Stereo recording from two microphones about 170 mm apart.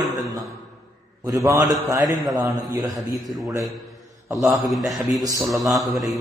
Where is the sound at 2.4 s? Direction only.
Centre (ahead or behind).